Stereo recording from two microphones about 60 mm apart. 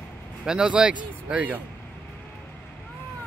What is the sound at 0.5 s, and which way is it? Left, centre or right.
A man's voice, centre.